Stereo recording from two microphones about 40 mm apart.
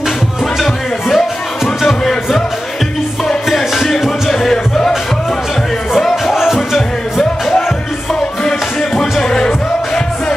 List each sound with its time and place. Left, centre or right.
0.6 s music: centre
3.5 s music: centre
5.9 s music: centre
8.5 s music: centre